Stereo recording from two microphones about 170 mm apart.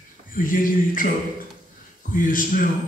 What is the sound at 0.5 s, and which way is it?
Speech, 50° left (ahead or behind).